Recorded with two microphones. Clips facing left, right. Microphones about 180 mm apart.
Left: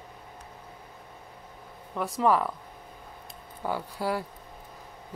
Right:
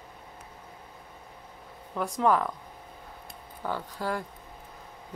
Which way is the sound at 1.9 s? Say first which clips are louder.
Even; centre (ahead or behind).